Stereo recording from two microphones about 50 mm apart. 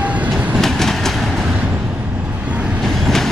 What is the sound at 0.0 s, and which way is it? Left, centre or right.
Train, right.